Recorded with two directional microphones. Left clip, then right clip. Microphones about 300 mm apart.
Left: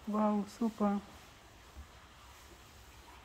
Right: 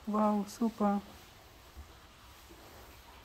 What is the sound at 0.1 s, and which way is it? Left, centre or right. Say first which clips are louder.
Speech: right 3 dB; centre.